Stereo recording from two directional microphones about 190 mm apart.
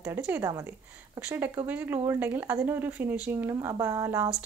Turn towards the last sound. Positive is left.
turn(degrees=-15)  # may be behind; listen again after turning